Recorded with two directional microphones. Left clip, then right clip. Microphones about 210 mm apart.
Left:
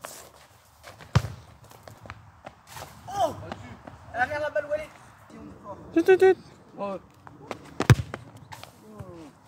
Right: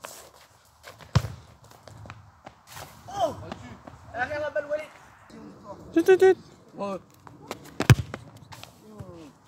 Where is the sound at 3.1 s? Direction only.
50° left (ahead or behind).